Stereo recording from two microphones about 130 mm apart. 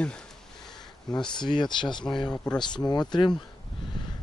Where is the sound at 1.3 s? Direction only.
35° left (ahead or behind).